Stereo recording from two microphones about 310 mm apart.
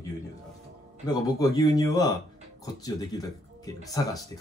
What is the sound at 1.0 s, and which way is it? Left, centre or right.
Speech, centre.